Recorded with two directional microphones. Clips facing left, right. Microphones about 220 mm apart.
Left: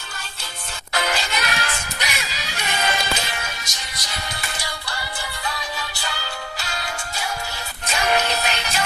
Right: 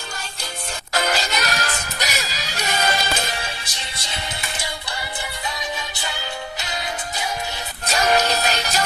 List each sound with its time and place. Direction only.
0.9 s music: 40° right (ahead or behind); by 7.2 s 20° right (ahead or behind)
7.9 s music: 40° right (ahead or behind)